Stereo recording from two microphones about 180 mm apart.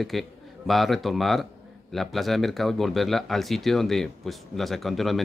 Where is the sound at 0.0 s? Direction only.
Centre (ahead or behind).